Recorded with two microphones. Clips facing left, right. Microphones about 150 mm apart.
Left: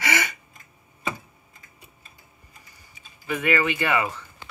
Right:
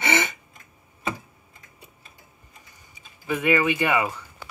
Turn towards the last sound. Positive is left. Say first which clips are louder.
# right 1 dB
turn(degrees=-15)  # may be behind; listen again after turning